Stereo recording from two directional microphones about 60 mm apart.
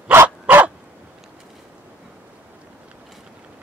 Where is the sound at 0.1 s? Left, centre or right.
Right.